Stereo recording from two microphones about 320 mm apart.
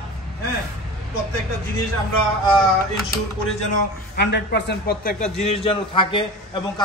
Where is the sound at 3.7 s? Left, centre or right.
Left.